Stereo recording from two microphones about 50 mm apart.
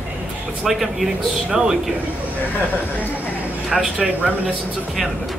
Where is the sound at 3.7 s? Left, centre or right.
Centre.